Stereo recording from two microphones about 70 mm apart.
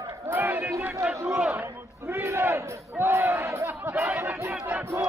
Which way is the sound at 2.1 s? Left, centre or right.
Right.